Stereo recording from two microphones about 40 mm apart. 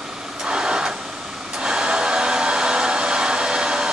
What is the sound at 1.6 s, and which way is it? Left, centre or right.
Hair dryer, right.